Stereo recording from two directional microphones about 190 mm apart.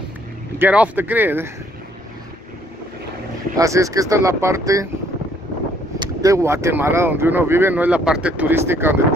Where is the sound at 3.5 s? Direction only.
15° right (ahead or behind).